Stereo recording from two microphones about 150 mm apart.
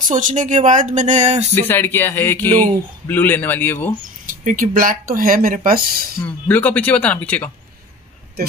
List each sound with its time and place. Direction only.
0.0 s speech: 60° right (ahead or behind)
1.5 s speech: 15° left (ahead or behind)
4.3 s speech: 65° right (ahead or behind)
6.2 s speech: 10° left (ahead or behind)